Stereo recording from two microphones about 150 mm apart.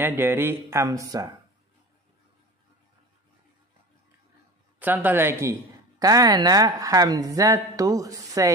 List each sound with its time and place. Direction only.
0.0 s speech: 15° right (ahead or behind)
4.7 s speech: 10° right (ahead or behind)